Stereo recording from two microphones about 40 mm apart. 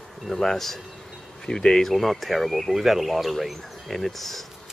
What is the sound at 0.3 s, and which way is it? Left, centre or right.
Speech, centre.